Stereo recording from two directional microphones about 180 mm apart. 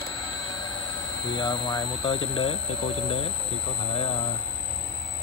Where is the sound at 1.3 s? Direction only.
25° left (ahead or behind).